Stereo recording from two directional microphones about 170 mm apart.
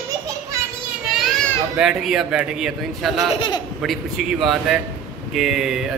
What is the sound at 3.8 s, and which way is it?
A man's voice, centre (ahead or behind).